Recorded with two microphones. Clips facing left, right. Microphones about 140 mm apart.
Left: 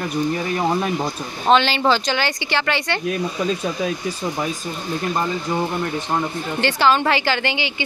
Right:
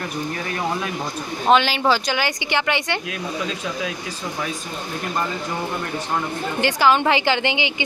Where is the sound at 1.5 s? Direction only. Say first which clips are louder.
Left 1 dB; 10° right (ahead or behind).